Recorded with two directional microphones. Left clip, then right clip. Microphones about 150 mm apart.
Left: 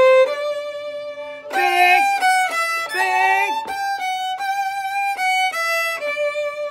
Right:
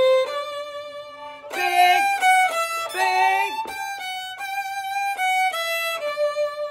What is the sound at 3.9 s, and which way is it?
Violin, 35° left (ahead or behind).